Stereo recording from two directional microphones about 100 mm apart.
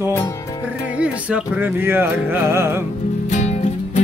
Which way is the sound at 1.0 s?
10° right (ahead or behind).